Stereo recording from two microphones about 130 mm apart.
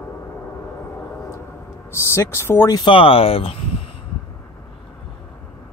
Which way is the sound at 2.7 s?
40° left (ahead or behind).